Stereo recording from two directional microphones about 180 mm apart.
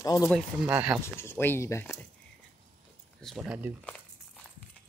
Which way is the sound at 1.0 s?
15° left (ahead or behind).